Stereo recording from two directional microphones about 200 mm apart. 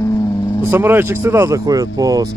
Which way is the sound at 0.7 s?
10° right (ahead or behind).